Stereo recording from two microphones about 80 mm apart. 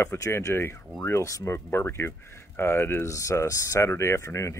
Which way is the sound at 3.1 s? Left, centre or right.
Left.